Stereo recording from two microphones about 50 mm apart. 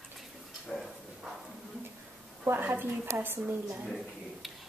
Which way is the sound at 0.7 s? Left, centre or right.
Centre.